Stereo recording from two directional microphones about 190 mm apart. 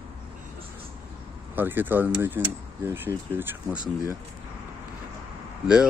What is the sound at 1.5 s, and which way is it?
Speech, 10° right (ahead or behind).